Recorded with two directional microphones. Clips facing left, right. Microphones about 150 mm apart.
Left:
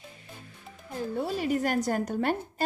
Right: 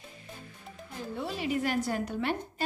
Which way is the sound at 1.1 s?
45° left (ahead or behind).